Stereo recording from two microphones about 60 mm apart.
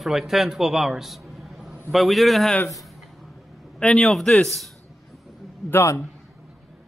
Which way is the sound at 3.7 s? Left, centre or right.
Centre.